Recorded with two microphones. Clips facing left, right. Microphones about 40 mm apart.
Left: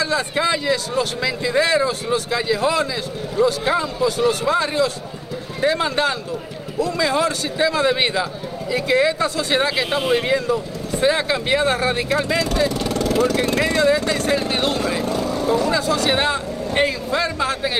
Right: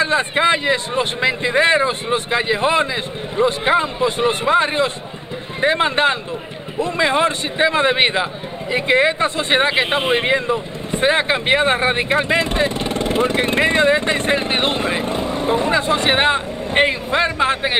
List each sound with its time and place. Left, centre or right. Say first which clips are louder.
0.0 s speech: right 4 dB; right